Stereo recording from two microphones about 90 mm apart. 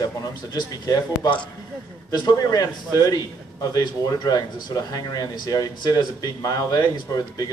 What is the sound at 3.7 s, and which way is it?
Speech, 45° left (ahead or behind).